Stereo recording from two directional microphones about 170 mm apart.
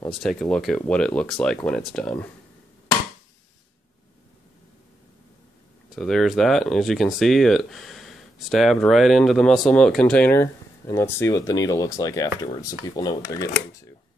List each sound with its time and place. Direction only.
0.1 s speech: centre (ahead or behind)
5.9 s speech: centre (ahead or behind); by 13.9 s 20° left (ahead or behind)